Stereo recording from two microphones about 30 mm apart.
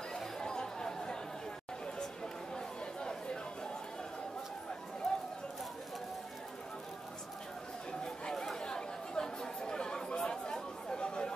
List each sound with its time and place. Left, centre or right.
0.4 s chatter: left
2.5 s chatter: left
5.1 s run: centre
8.0 s chatter: centre
11.0 s chatter: left